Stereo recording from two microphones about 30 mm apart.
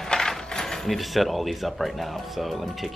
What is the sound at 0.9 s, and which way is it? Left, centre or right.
Speech, centre.